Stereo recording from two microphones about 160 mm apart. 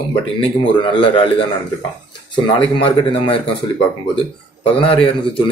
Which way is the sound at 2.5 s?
35° left (ahead or behind).